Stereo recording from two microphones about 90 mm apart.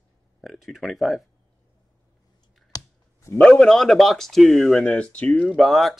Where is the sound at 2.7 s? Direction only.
45° left (ahead or behind).